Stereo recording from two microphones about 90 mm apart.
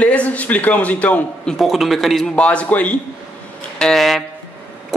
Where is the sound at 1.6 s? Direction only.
Centre (ahead or behind).